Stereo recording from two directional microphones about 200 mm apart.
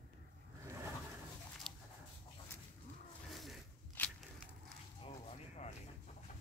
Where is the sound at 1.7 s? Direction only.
5° left (ahead or behind).